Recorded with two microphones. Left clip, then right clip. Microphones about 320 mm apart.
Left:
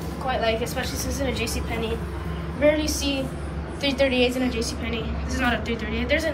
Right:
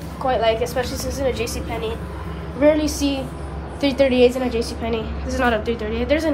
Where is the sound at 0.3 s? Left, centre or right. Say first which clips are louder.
Right 5 dB; centre.